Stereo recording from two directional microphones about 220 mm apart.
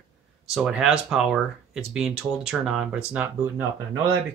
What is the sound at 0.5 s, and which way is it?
Speech, centre (ahead or behind).